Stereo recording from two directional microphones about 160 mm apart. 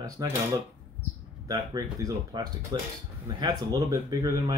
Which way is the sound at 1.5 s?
25° right (ahead or behind).